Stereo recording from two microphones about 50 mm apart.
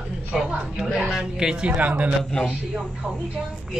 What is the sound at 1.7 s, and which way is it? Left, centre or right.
Speech, right.